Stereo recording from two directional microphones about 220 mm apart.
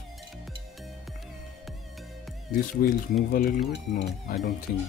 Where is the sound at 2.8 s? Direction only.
40° left (ahead or behind).